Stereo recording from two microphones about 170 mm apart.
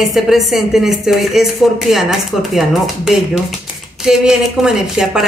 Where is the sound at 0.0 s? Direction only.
Centre (ahead or behind).